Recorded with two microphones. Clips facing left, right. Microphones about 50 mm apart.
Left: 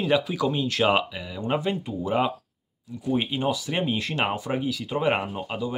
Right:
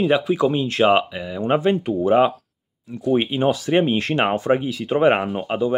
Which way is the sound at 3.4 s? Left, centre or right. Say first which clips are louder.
Right 7 dB; right.